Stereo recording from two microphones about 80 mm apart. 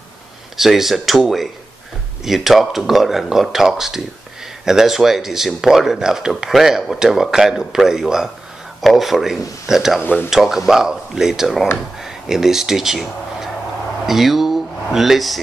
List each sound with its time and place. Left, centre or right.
0.6 s speech: centre
10.0 s speech: left
10.3 s speech: centre